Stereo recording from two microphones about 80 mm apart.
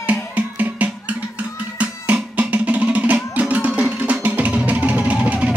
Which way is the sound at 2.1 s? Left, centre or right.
Centre.